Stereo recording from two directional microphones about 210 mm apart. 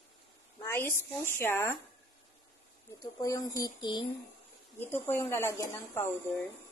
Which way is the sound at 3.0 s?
15° left (ahead or behind).